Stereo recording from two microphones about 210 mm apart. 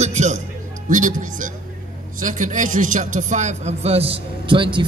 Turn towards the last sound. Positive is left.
turn(degrees=-25)  # may be behind; listen again after turning